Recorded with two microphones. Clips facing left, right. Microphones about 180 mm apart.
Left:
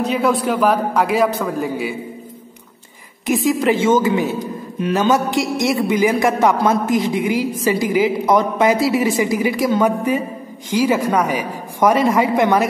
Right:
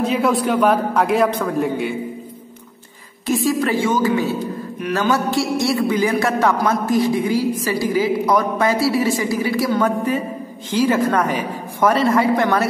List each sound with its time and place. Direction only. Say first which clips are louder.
0.0 s a man's voice: even; centre (ahead or behind)
3.3 s a woman's voice: left 2 dB; 20° left (ahead or behind)